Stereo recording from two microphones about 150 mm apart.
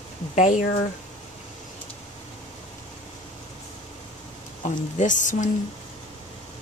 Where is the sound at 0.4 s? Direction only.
55° left (ahead or behind).